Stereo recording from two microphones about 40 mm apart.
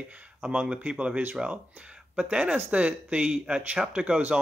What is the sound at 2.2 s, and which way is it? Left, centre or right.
Speech, right.